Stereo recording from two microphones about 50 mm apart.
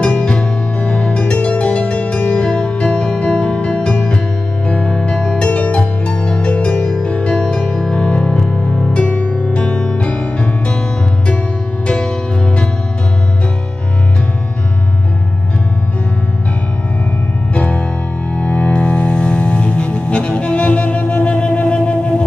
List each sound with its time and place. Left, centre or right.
0.0 s music: left
5.5 s music: left
17.6 s music: left